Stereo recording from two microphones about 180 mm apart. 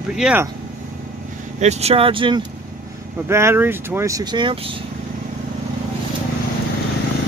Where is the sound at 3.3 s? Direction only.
15° right (ahead or behind).